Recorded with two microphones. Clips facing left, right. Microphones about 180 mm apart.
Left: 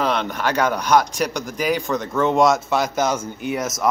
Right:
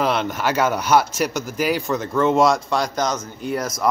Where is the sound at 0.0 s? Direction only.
5° right (ahead or behind).